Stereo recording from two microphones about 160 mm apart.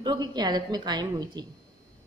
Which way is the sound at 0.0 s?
25° right (ahead or behind).